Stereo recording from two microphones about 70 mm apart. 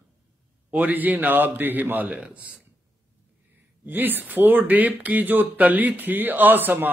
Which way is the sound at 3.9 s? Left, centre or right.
Right.